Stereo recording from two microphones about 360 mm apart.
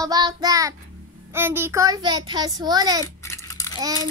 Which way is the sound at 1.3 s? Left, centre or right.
Centre.